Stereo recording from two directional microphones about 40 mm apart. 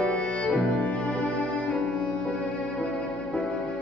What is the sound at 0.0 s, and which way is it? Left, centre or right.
Music, left.